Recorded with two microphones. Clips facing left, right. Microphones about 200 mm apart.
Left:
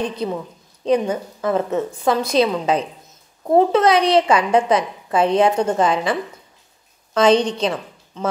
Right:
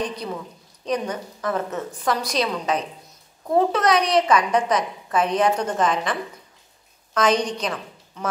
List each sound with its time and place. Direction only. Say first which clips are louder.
0.8 s a woman's voice: left 7 dB; 30° left (ahead or behind)
7.2 s a woman's voice: left 6 dB; 25° left (ahead or behind)